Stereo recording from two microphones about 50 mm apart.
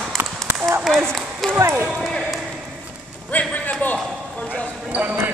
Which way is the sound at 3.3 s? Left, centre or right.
Left.